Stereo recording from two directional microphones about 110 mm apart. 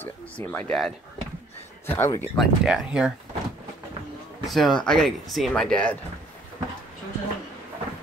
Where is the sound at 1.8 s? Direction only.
20° left (ahead or behind).